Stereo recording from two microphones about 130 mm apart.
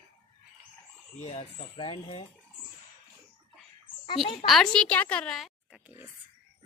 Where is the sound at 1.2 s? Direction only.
55° left (ahead or behind).